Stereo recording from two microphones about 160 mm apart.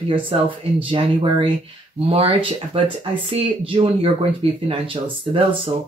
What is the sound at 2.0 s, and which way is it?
Speech, 35° right (ahead or behind).